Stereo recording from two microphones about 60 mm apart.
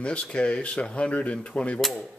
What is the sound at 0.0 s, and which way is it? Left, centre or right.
A man's voice, centre.